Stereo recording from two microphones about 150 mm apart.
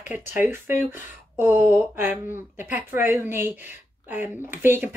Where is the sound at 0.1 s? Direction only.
10° right (ahead or behind).